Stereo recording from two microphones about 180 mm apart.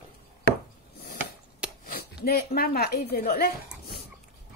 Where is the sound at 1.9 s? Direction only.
60° left (ahead or behind).